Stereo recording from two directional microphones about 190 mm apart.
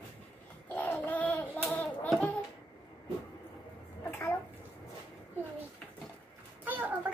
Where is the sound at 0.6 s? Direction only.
10° left (ahead or behind).